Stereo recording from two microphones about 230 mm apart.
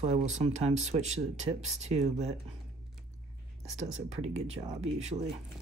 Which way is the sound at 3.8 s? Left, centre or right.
Right.